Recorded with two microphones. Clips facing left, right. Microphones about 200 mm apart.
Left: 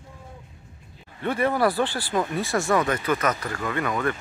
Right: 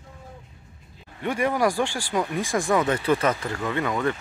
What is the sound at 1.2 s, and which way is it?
Speech, 10° right (ahead or behind).